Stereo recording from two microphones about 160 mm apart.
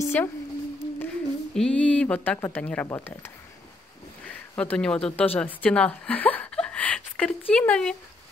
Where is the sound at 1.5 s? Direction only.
5° left (ahead or behind).